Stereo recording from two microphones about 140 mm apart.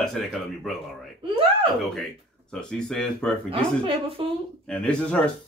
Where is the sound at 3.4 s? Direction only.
40° right (ahead or behind).